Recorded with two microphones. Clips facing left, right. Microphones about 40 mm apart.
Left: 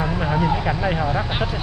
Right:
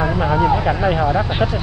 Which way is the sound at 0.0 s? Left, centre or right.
Centre.